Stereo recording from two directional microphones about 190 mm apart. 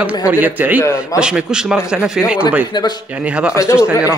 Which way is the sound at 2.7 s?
20° left (ahead or behind).